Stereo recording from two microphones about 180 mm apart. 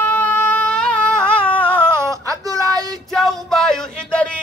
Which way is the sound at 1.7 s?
15° right (ahead or behind).